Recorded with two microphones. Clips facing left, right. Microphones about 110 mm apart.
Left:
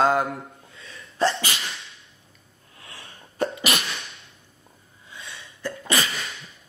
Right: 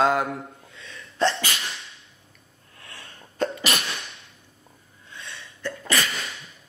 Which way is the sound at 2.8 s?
5° left (ahead or behind).